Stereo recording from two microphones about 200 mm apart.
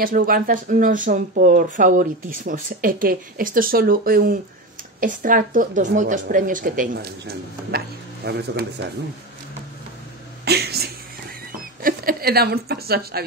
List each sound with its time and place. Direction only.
0.0 s speech: 45° right (ahead or behind)
10.4 s speech: 55° right (ahead or behind)